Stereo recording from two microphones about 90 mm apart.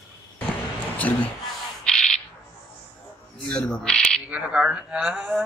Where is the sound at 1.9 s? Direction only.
10° left (ahead or behind).